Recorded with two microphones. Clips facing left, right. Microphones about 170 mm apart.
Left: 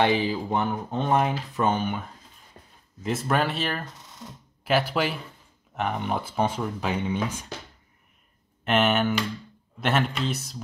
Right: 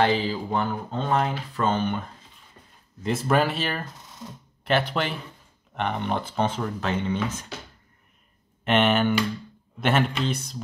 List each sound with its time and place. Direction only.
0.0 s speech: 15° left (ahead or behind)
1.8 s speech: 5° left (ahead or behind)
8.6 s speech: centre (ahead or behind)